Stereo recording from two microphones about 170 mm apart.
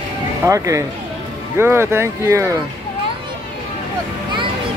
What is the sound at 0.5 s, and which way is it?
Speech, 20° right (ahead or behind).